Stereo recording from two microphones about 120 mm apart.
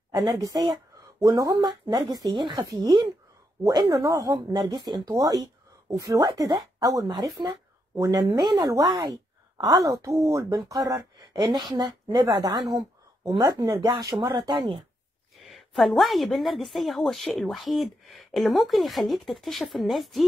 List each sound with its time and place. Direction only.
0.1 s a woman's voice: 30° right (ahead or behind)
4.5 s a woman's voice: 40° right (ahead or behind)
15.5 s a woman's voice: centre (ahead or behind)